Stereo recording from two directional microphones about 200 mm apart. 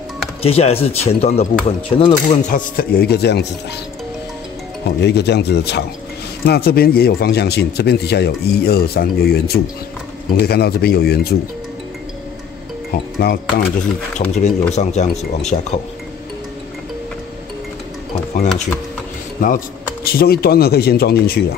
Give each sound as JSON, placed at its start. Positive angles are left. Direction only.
{"t": 0.4, "sound": "speech", "side_deg": 30}
{"t": 5.0, "sound": "speech", "side_deg": 55}
{"t": 13.2, "sound": "speech", "side_deg": 50}
{"t": 14.1, "sound": "speech", "side_deg": 5}
{"t": 14.7, "sound": "speech", "side_deg": 35}
{"t": 19.4, "sound": "speech", "side_deg": 45}